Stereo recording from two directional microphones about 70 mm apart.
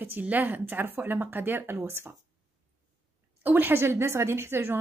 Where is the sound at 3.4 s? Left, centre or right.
Right.